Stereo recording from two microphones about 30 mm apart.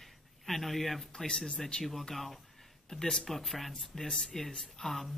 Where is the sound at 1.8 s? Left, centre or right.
Centre.